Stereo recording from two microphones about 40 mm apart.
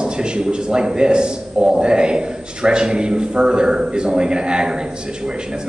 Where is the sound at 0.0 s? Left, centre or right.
Right.